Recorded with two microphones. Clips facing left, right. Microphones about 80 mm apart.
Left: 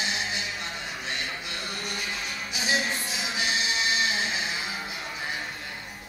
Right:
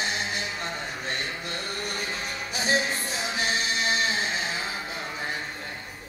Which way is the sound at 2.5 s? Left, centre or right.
Right.